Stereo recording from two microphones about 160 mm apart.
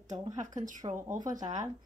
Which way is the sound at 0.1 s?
20° right (ahead or behind).